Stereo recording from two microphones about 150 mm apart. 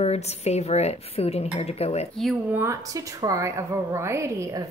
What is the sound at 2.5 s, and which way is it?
A woman's voice, 20° right (ahead or behind).